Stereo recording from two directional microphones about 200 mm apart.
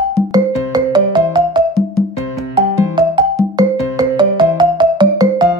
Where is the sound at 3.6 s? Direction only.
20° right (ahead or behind).